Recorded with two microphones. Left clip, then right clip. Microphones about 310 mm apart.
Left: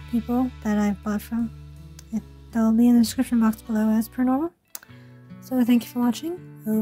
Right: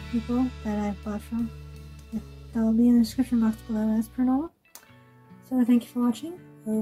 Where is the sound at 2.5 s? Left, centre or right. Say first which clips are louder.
Left 3 dB; left.